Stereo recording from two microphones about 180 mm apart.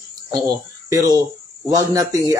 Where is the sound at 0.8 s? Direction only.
20° right (ahead or behind).